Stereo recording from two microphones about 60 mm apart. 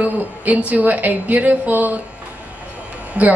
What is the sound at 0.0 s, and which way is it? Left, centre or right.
A woman's voice, right.